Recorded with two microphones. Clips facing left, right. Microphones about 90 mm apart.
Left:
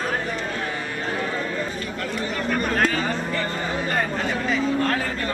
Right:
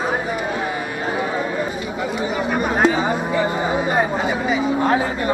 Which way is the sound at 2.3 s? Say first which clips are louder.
Right 2 dB; 10° right (ahead or behind).